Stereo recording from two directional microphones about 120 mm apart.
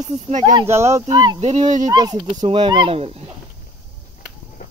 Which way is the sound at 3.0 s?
55° right (ahead or behind).